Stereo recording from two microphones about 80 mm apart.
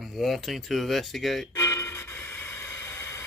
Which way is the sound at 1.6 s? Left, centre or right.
Left.